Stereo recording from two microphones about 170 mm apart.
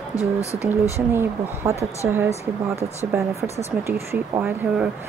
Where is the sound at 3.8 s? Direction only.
15° right (ahead or behind).